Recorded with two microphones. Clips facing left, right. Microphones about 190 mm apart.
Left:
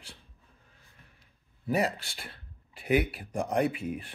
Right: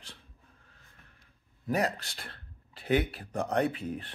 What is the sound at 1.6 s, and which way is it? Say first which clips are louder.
Speech: left 1 dB; 10° left (ahead or behind).